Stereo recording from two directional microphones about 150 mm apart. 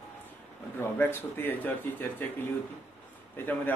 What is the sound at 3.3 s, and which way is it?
Speech, 10° left (ahead or behind).